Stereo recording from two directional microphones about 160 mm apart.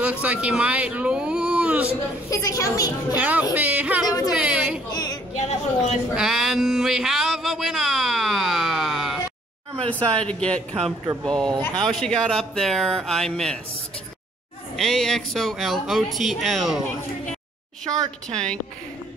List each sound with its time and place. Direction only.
0.0 s speech: 10° right (ahead or behind)
2.2 s a child's voice: 20° left (ahead or behind)
3.2 s speech: 10° right (ahead or behind)
4.8 s a child's voice: 25° left (ahead or behind)
5.3 s a woman's voice: 45° left (ahead or behind)
6.1 s a sound: 5° right (ahead or behind)
9.8 s speech: 5° left (ahead or behind)
14.8 s speech: centre (ahead or behind)
18.3 s speech: 5° left (ahead or behind)